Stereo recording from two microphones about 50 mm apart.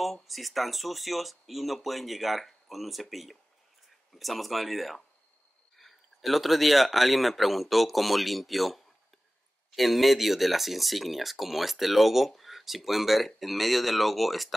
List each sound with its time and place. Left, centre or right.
0.0 s speech: centre